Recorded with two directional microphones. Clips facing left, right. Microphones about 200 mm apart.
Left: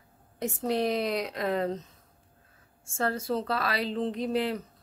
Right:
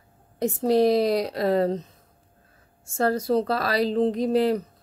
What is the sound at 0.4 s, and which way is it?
A woman's voice, 35° right (ahead or behind).